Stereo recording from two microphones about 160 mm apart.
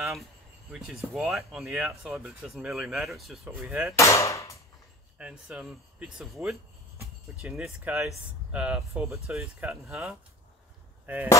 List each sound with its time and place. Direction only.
0.0 s speech: centre (ahead or behind)
3.5 s speech: 10° right (ahead or behind)
3.9 s chop: 20° left (ahead or behind)
5.2 s speech: 5° right (ahead or behind)